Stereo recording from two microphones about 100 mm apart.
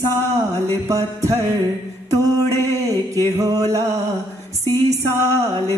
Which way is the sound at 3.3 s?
35° right (ahead or behind).